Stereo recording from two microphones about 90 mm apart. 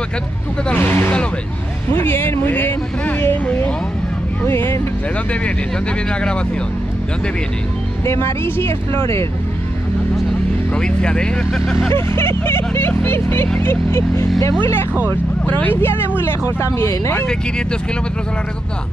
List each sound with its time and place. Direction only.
0.7 s speech: 20° left (ahead or behind)
6.0 s speech: 10° left (ahead or behind)
8.0 s speech: 30° left (ahead or behind)
10.7 s speech: 10° left (ahead or behind)
11.9 s speech: 25° left (ahead or behind)
17.3 s speech: 10° left (ahead or behind)